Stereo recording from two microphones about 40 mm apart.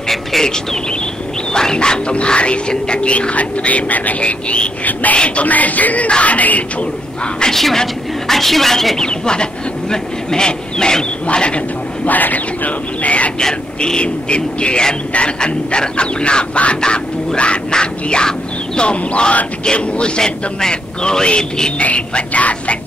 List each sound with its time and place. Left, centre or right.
1.5 s quack: centre; by 4.2 s left
4.2 s speech: left
7.5 s a woman's voice: centre
11.3 s quack: left
12.1 s speech: left
13.7 s quack: left
21.7 s speech: left